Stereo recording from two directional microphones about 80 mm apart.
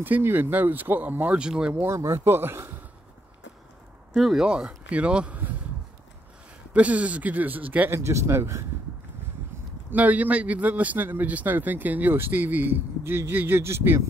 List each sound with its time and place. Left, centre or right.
0.0 s a man's voice: right
1.4 s speech: centre
1.9 s speech: right
4.1 s speech: centre
6.7 s a man's voice: centre
7.9 s speech: right
9.8 s a man's voice: centre